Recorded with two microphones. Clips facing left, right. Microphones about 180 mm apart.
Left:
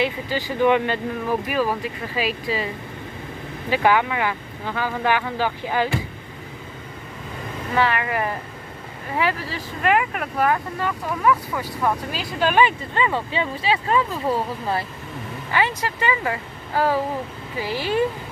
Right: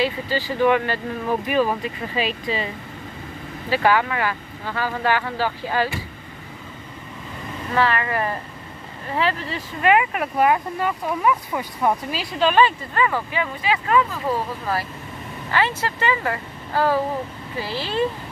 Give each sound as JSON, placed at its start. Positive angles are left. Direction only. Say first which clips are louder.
{"t": 0.0, "sound": "speech", "louder": "right 1 dB", "side_deg": 15}
{"t": 1.5, "sound": "speech", "louder": "right 2 dB", "side_deg": 5}
{"t": 3.7, "sound": "speech", "louder": "even", "side_deg": 15}
{"t": 7.7, "sound": "speech", "louder": "even", "side_deg": 15}
{"t": 10.4, "sound": "speech", "louder": "right 2 dB", "side_deg": -15}
{"t": 12.4, "sound": "speech", "louder": "right 1 dB", "side_deg": 10}
{"t": 12.9, "sound": "speech", "louder": "even", "side_deg": 25}
{"t": 15.5, "sound": "speech", "louder": "even", "side_deg": 15}